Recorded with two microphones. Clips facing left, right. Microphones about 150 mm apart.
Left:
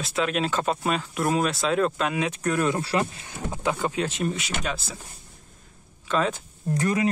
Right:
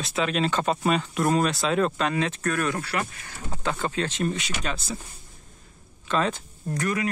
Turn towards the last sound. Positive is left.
turn(degrees=25)  # may be behind; listen again after turning